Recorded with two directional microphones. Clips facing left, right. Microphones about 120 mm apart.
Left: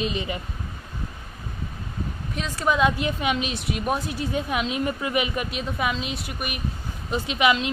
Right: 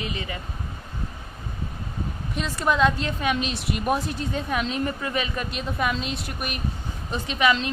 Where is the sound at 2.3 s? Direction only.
Centre (ahead or behind).